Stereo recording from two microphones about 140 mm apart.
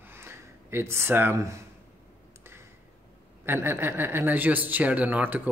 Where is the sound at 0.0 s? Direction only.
15° right (ahead or behind).